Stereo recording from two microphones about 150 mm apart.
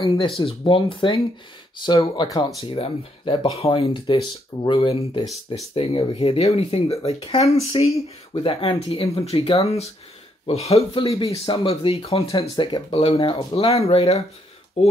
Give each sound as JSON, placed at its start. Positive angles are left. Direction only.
{"t": 0.0, "sound": "speech", "side_deg": 35}
{"t": 2.6, "sound": "speech", "side_deg": 40}